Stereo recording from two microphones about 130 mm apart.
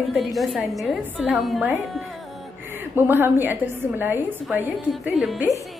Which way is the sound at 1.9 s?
Centre (ahead or behind).